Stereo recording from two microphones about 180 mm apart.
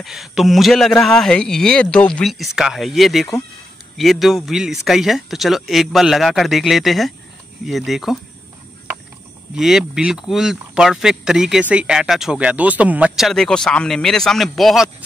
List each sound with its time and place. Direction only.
0.0 s speech: centre (ahead or behind)
9.6 s speech: centre (ahead or behind)